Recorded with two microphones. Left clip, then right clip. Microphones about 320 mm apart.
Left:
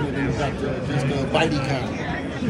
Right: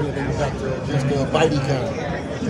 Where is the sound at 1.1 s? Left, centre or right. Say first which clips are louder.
Right 3 dB; right.